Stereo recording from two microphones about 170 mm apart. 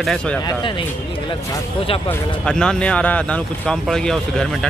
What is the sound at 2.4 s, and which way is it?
Speech, 5° left (ahead or behind).